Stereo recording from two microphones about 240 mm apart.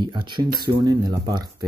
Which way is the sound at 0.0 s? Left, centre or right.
Centre.